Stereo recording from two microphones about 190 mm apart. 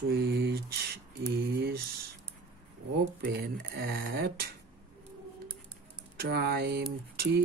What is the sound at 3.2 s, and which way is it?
Speech, 55° right (ahead or behind).